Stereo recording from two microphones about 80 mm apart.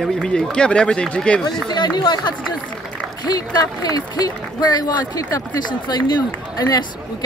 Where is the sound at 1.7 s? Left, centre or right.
Left.